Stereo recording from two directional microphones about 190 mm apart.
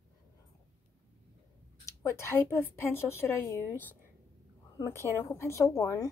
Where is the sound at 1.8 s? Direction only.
15° left (ahead or behind).